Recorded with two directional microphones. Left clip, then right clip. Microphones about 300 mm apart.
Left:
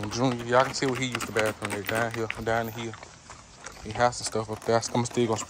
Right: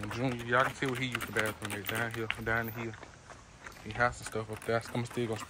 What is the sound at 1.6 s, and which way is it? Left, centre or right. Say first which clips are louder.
Speech: left 7 dB; left.